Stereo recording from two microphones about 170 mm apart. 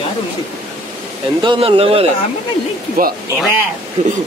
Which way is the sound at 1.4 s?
30° right (ahead or behind).